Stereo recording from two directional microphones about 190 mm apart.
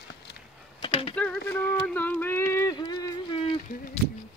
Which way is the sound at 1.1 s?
5° left (ahead or behind).